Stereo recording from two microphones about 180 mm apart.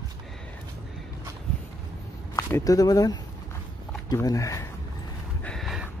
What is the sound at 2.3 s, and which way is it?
Speech, 20° left (ahead or behind).